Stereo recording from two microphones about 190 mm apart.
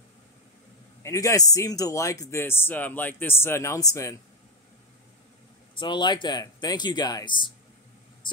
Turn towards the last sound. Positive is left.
turn(degrees=25)  # may be behind; listen again after turning